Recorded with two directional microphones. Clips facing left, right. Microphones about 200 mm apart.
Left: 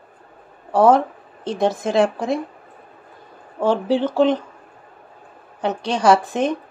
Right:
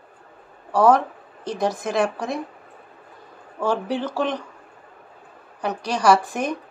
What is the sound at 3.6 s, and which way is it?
Speech, 25° left (ahead or behind).